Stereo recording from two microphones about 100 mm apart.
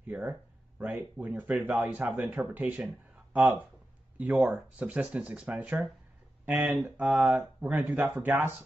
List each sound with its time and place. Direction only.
0.0 s speech: 20° right (ahead or behind)